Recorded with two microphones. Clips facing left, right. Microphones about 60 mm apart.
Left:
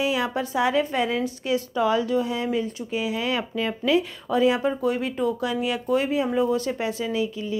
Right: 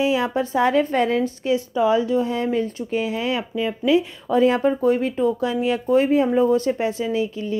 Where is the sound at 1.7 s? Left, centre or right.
Right.